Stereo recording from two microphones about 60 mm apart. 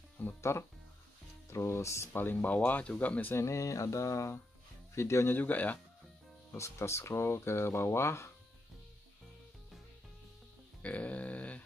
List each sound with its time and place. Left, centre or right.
0.4 s speech: left
2.1 s speech: left
3.3 s a sound: left
4.9 s speech: left
5.3 s speech: left
6.5 s speech: left
10.8 s a sound: left